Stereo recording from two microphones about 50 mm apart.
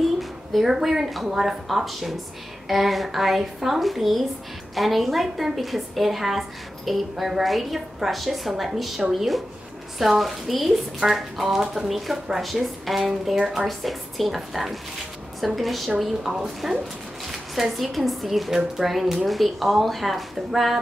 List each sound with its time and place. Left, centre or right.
0.2 s speech: centre
16.0 s speech: centre